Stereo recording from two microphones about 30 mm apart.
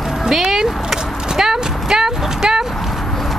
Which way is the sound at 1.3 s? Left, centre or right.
Centre.